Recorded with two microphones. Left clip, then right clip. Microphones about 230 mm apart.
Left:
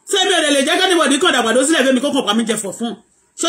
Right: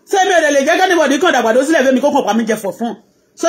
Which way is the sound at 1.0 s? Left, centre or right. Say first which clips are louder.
Right 2 dB; right.